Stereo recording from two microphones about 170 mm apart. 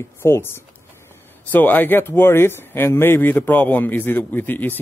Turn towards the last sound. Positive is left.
turn(degrees=10)  # may be behind; listen again after turning